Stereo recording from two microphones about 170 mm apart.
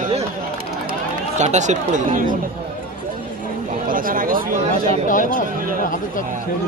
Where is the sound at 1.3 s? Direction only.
45° right (ahead or behind).